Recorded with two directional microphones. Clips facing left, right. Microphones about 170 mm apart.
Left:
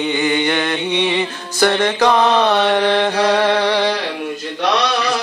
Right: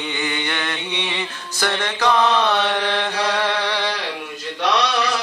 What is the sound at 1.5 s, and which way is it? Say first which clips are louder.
Mantra: left 8 dB; 45° left (ahead or behind).